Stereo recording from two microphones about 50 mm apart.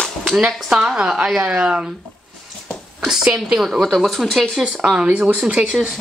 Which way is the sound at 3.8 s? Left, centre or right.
Centre.